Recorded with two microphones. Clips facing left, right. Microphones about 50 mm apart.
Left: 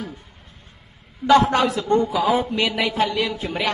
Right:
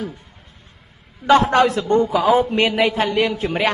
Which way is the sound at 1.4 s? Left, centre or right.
Right.